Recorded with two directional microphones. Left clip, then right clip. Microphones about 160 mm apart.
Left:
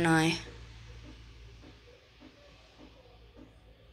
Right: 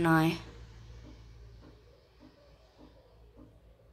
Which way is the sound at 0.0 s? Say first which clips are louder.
Even; 45° right (ahead or behind).